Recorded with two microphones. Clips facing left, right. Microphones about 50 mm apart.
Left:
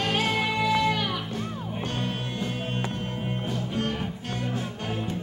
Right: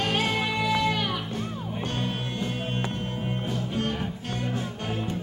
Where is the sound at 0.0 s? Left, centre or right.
Right.